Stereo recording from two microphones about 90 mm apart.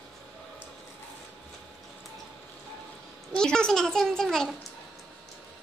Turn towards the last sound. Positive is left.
turn(degrees=5)  # may be behind; listen again after turning